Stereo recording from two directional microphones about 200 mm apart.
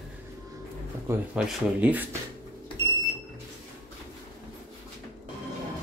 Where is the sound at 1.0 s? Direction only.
5° right (ahead or behind).